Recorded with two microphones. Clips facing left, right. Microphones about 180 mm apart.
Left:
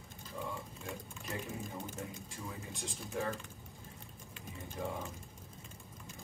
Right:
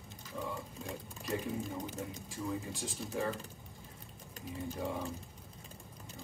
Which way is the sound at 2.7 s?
Centre (ahead or behind).